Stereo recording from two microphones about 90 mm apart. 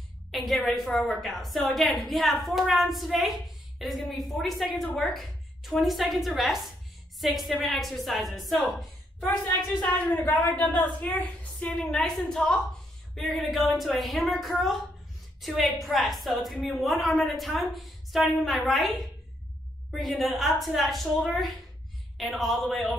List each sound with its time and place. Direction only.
0.3 s a woman's voice: centre (ahead or behind)
9.8 s a woman's voice: 20° left (ahead or behind)
11.8 s a woman's voice: 5° left (ahead or behind)